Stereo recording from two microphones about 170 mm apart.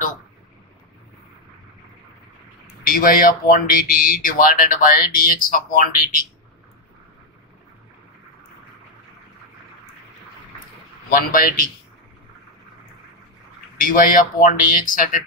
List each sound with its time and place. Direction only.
2.9 s speech: 55° left (ahead or behind)
11.1 s speech: 55° left (ahead or behind)
13.7 s speech: 55° left (ahead or behind)